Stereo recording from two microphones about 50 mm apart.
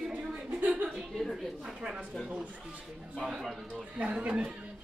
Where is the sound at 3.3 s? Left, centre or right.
Centre.